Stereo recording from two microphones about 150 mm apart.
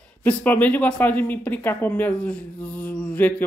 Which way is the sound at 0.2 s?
10° left (ahead or behind).